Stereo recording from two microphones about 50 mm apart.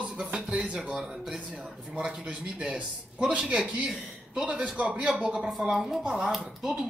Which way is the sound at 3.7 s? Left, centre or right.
Centre.